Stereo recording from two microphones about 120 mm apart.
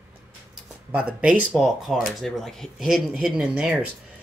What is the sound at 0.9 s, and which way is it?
Speech, 10° right (ahead or behind).